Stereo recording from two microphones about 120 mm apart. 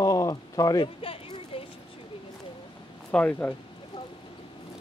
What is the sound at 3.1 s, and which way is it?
Speech, 10° left (ahead or behind).